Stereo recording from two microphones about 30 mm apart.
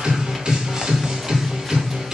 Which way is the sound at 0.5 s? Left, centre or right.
Centre.